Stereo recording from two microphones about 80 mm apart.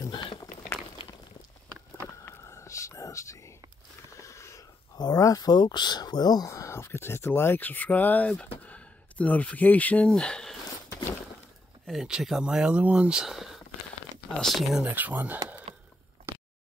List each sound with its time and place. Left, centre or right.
0.1 s a sound: left
2.2 s whispering: left
4.2 s a sound: left
4.9 s speech: left
6.5 s speech: left; by 10.6 s centre
11.8 s speech: centre
14.9 s speech: right